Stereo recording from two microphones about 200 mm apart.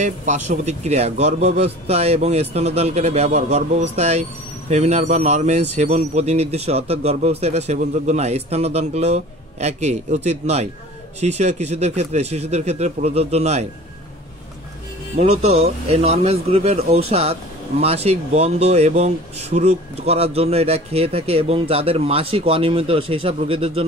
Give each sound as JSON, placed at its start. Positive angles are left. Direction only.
{"t": 0.0, "sound": "a man's voice", "side_deg": -35}
{"t": 15.1, "sound": "a man's voice", "side_deg": -30}